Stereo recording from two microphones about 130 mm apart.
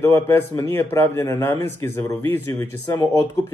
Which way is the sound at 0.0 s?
20° left (ahead or behind).